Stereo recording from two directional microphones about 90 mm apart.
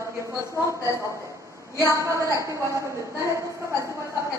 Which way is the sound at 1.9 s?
35° right (ahead or behind).